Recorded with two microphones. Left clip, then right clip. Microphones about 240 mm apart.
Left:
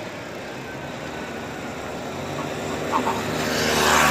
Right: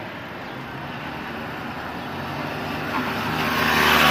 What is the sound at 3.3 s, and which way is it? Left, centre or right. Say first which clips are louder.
Vehicle: right 2 dB; right.